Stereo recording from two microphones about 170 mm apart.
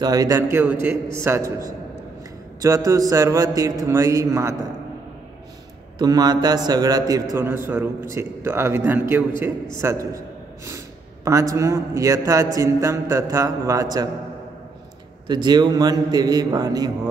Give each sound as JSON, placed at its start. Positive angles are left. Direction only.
{"t": 0.0, "sound": "a man's voice", "side_deg": -20}
{"t": 5.9, "sound": "a man's voice", "side_deg": -25}
{"t": 15.2, "sound": "a man's voice", "side_deg": -25}